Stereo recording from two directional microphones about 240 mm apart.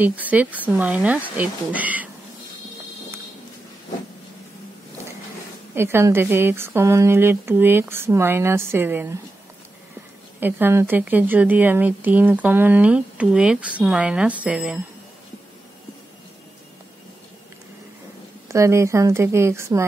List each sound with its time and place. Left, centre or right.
0.0 s a woman's voice: centre
5.8 s a woman's voice: centre
10.4 s a woman's voice: centre
18.5 s a woman's voice: centre